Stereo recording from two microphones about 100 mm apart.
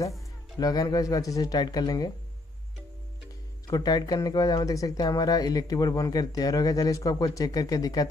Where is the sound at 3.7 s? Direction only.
40° left (ahead or behind).